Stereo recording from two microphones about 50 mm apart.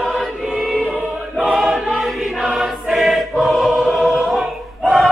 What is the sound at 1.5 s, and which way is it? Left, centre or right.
Choir, centre.